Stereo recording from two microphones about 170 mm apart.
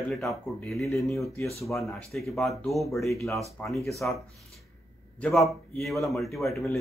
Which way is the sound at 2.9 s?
15° left (ahead or behind).